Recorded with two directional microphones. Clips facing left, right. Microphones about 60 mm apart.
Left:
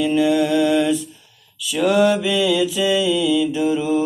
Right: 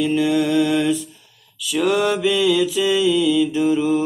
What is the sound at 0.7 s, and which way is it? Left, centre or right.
Mantra, right.